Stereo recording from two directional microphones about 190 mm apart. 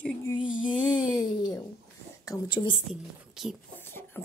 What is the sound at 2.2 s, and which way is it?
Speech, 20° left (ahead or behind).